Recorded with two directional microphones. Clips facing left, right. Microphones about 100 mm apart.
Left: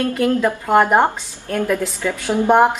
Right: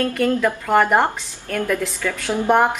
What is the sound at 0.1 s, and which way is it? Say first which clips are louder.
A woman's voice: left 2 dB; 20° left (ahead or behind).